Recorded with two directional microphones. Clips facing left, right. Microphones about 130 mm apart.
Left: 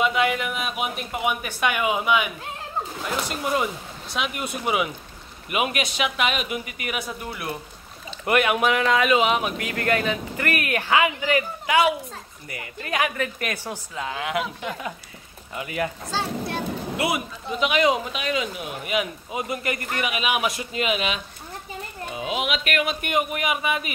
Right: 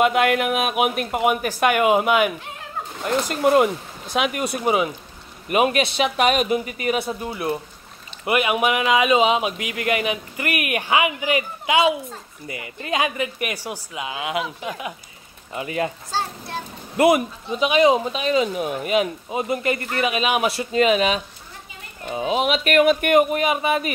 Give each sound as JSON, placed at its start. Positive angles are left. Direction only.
{"t": 0.0, "sound": "speech", "side_deg": -55}
{"t": 1.2, "sound": "speech", "side_deg": -45}
{"t": 4.4, "sound": "speech", "side_deg": -35}
{"t": 8.3, "sound": "speech", "side_deg": -5}
{"t": 15.5, "sound": "speech", "side_deg": -25}
{"t": 16.9, "sound": "speech", "side_deg": -50}
{"t": 17.6, "sound": "speech", "side_deg": -25}
{"t": 22.9, "sound": "speech", "side_deg": -60}
{"t": 23.2, "sound": "speech", "side_deg": -35}